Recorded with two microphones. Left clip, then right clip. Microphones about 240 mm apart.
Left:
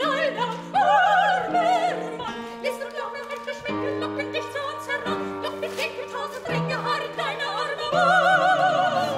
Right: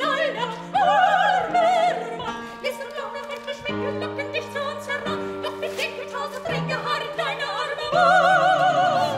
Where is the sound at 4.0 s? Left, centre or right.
Centre.